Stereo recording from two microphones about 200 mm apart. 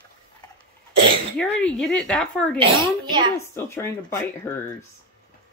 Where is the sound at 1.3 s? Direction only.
5° left (ahead or behind).